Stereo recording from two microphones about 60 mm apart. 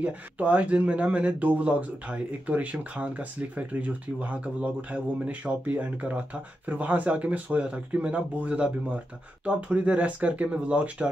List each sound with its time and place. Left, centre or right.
0.0 s speech: right